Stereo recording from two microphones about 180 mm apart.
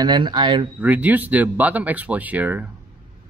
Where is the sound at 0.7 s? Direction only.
10° right (ahead or behind).